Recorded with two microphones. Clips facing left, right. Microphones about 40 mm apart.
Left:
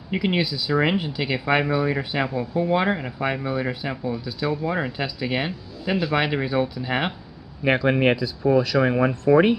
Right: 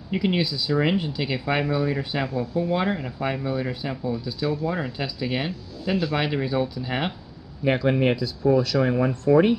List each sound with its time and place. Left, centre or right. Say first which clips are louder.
0.1 s speech: left 1 dB; centre